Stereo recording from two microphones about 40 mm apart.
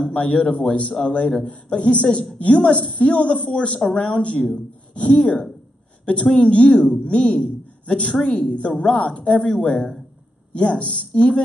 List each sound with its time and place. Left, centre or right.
0.1 s a woman's voice: left
10.5 s a woman's voice: left